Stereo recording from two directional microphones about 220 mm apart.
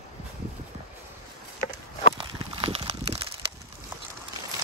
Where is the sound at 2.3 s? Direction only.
20° right (ahead or behind).